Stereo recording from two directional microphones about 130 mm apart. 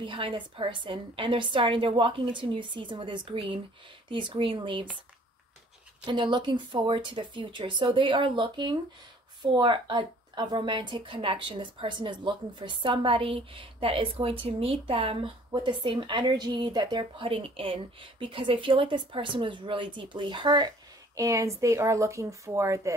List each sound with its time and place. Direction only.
0.0 s a woman's voice: 40° right (ahead or behind)
6.0 s a woman's voice: 35° right (ahead or behind)